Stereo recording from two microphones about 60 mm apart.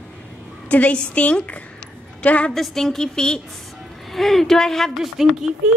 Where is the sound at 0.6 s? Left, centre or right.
Left.